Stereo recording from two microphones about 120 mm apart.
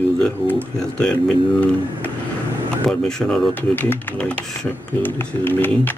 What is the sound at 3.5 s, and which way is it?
Speech, 15° left (ahead or behind).